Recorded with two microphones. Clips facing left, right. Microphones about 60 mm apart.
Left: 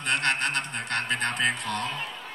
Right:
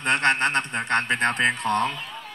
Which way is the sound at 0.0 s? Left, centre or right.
Right.